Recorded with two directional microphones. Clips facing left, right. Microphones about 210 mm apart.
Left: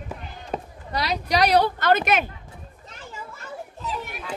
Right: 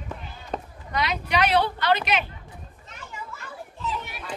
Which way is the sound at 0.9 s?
35° left (ahead or behind).